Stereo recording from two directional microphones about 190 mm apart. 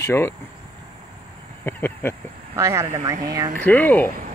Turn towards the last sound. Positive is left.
turn(degrees=10)  # may be behind; listen again after turning